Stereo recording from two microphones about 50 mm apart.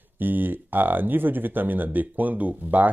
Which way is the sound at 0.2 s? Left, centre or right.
Right.